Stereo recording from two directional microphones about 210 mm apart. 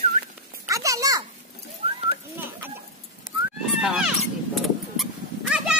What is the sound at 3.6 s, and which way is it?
Horse, centre (ahead or behind).